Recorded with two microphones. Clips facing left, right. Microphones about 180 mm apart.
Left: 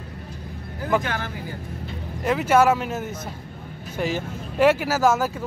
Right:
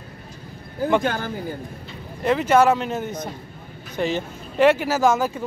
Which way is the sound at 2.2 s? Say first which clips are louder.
Right 1 dB; 5° left (ahead or behind).